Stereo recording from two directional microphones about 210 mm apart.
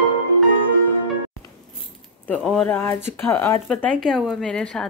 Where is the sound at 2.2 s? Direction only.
5° left (ahead or behind).